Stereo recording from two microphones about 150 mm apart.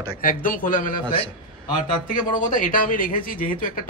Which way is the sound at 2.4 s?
65° left (ahead or behind).